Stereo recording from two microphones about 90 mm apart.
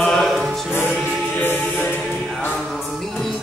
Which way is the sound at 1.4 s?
25° left (ahead or behind).